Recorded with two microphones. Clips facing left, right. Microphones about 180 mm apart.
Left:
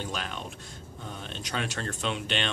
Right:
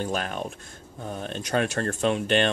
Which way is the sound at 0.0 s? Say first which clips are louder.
Right 7 dB; 50° right (ahead or behind).